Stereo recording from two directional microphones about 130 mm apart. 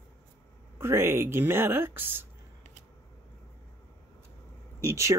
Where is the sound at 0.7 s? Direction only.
20° right (ahead or behind).